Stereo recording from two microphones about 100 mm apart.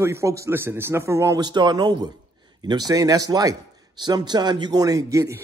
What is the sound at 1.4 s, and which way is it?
A man's voice, 45° right (ahead or behind).